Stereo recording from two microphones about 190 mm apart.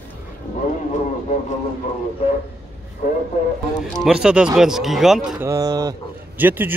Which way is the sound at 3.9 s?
5° right (ahead or behind).